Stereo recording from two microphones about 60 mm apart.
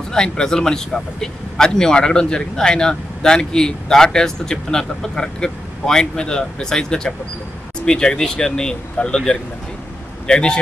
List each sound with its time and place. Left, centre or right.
0.1 s speech: centre